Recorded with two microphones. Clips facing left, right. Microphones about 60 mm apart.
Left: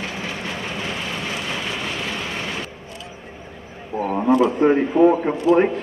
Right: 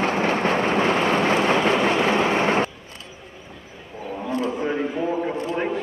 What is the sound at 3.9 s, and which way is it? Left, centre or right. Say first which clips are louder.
Wild animals: left 10 dB; left.